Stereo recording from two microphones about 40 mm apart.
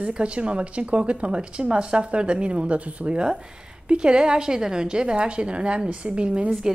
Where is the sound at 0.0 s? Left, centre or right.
Right.